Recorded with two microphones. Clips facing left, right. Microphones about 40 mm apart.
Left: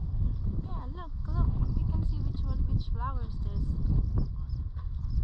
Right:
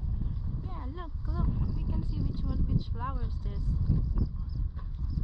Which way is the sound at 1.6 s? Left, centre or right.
Right.